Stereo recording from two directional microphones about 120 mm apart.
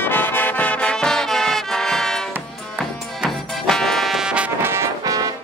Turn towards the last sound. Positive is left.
turn(degrees=-30)  # may be behind; listen again after turning